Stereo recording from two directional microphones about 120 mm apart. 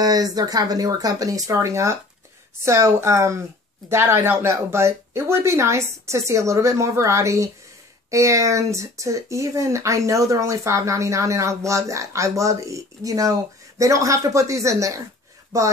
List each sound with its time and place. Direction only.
0.0 s speech: 30° right (ahead or behind)